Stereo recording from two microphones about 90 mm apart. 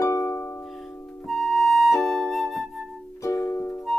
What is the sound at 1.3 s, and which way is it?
Music, centre (ahead or behind).